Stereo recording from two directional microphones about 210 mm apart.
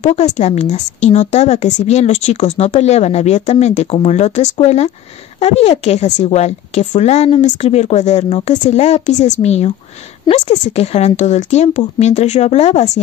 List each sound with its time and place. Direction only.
0.0 s a woman's voice: 35° left (ahead or behind)